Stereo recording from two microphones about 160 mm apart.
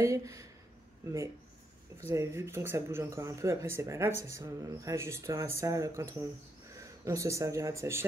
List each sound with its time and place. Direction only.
0.0 s speech: 20° right (ahead or behind)